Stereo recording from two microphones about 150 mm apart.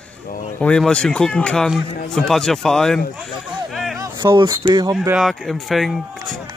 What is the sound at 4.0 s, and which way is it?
Speech, 25° right (ahead or behind).